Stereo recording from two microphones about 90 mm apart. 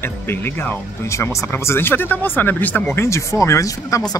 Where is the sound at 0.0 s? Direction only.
25° left (ahead or behind).